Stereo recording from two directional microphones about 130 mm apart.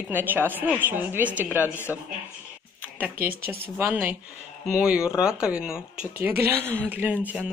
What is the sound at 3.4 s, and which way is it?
Speech, 15° right (ahead or behind).